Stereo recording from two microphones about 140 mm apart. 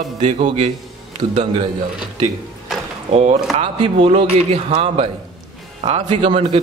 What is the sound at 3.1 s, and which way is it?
Speech, 50° right (ahead or behind).